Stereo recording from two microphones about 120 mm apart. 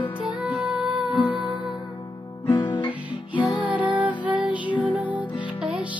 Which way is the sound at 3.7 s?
10° right (ahead or behind).